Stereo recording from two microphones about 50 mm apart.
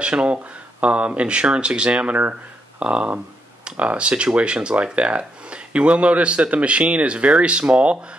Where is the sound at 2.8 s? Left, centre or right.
Centre.